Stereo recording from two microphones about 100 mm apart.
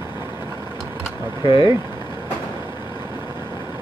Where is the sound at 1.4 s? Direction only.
60° left (ahead or behind).